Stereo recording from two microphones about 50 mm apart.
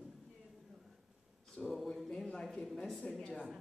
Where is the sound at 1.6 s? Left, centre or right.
Left.